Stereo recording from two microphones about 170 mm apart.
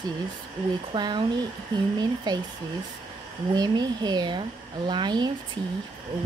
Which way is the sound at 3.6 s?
25° right (ahead or behind).